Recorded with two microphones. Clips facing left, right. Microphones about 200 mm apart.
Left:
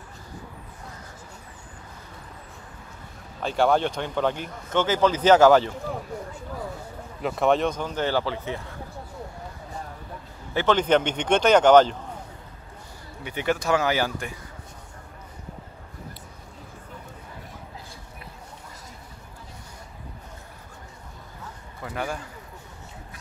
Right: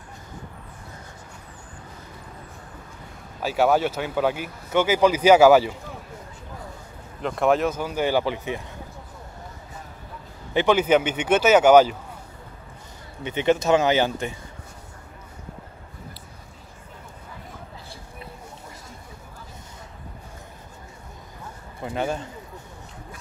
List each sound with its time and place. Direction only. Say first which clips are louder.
3.4 s speech: right 1 dB; 5° right (ahead or behind)
7.2 s speech: right 1 dB; centre (ahead or behind); by 8.7 s 15° right (ahead or behind)
10.5 s speech: right 2 dB; 15° right (ahead or behind)
13.2 s speech: right 5 dB; 20° right (ahead or behind)
21.8 s speech: right 4 dB; 25° right (ahead or behind)